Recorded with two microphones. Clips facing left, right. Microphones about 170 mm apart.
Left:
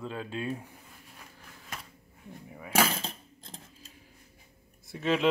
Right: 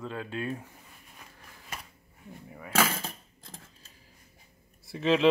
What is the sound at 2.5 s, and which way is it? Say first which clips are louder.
Keys jangling: left 1 dB; 10° left (ahead or behind).